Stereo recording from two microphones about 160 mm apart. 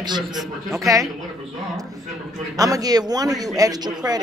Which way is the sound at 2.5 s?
20° right (ahead or behind).